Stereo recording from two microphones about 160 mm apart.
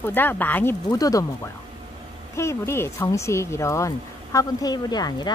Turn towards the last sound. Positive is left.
turn(degrees=25)  # may be behind; listen again after turning